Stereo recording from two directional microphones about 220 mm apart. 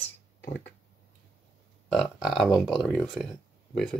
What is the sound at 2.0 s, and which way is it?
Speech, centre (ahead or behind).